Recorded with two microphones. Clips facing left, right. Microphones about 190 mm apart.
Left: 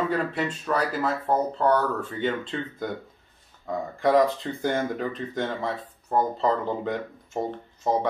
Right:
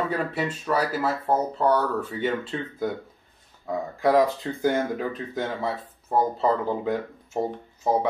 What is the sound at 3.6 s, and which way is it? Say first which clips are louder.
Speech: right 1 dB; 5° right (ahead or behind).